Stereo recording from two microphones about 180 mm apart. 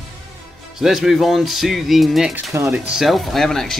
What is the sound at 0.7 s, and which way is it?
Speech, centre (ahead or behind).